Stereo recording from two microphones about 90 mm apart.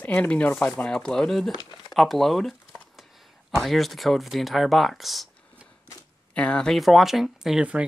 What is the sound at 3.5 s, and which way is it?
Speech, centre (ahead or behind).